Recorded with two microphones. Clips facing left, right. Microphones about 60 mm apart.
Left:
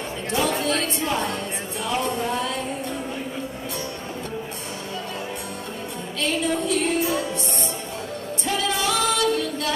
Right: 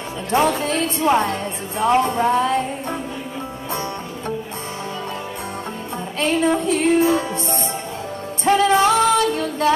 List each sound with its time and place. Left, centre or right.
0.3 s music: right
6.1 s music: right
8.5 s music: right